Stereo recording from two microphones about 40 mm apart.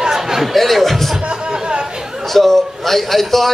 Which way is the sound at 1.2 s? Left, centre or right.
Right.